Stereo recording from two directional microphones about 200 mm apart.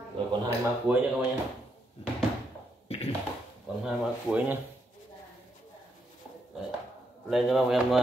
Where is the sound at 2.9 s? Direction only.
30° left (ahead or behind).